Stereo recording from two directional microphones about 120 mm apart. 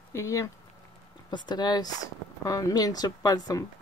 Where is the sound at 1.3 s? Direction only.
35° left (ahead or behind).